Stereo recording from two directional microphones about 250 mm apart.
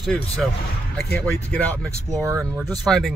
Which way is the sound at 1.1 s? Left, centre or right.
Centre.